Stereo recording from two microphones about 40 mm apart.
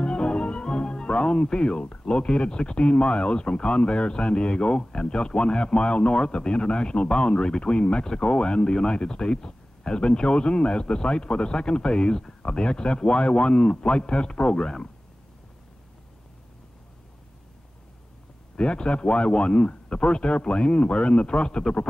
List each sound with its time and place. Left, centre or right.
0.0 s speech: left
18.6 s speech: left